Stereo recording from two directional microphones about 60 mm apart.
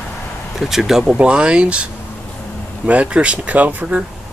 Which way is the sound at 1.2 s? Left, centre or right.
Centre.